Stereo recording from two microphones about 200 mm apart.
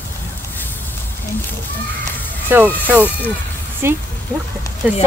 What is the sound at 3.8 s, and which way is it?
Speech, 10° right (ahead or behind).